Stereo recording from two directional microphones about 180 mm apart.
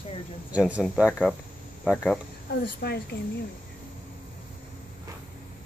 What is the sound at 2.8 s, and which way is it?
Speech, 60° left (ahead or behind).